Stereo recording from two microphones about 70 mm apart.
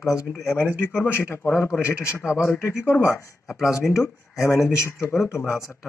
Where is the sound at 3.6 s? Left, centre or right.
Left.